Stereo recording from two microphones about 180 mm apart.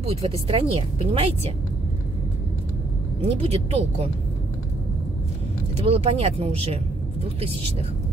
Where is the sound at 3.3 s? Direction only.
35° right (ahead or behind).